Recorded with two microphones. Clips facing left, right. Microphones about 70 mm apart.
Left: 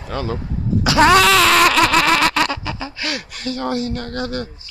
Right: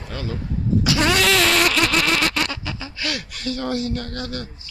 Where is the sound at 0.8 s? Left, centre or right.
Left.